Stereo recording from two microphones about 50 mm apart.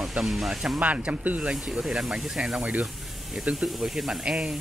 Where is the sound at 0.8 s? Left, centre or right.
Right.